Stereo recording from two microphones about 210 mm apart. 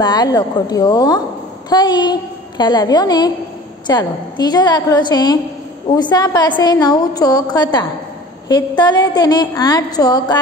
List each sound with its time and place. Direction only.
0.0 s a woman's voice: 20° left (ahead or behind)